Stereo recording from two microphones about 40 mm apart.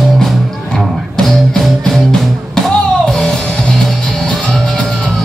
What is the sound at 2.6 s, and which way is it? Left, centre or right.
Music, centre.